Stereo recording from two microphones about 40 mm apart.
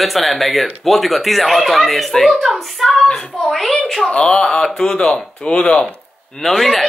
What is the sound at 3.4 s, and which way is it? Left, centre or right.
Speech, centre.